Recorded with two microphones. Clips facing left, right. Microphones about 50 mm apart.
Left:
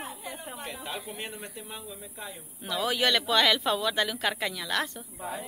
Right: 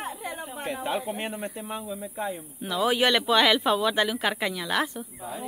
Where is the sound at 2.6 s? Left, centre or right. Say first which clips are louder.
Right 4 dB; centre.